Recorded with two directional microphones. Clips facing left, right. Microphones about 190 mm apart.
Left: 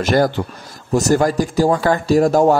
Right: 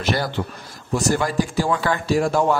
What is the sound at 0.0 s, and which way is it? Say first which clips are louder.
A man's voice: left 7 dB; 45° left (ahead or behind).